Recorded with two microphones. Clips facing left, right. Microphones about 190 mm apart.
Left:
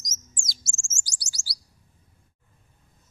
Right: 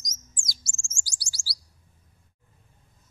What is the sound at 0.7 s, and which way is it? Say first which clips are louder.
Chirp: left 1 dB; 45° left (ahead or behind).